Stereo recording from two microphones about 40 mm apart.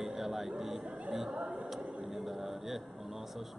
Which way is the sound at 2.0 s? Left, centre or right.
Centre.